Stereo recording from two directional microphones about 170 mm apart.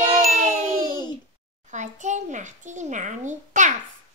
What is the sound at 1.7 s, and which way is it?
A child's voice, 45° right (ahead or behind).